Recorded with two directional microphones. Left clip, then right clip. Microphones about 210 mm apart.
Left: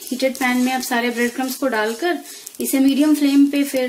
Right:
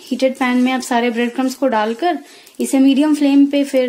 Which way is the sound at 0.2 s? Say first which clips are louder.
Right 3 dB; 50° right (ahead or behind).